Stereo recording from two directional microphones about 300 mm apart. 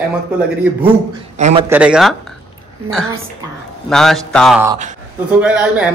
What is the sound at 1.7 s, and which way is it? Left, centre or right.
Speech, centre.